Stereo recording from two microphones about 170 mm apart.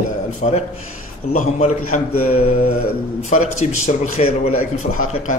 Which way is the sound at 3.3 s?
45° left (ahead or behind).